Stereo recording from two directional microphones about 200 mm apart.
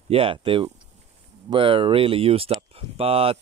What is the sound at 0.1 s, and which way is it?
Speech, 25° right (ahead or behind).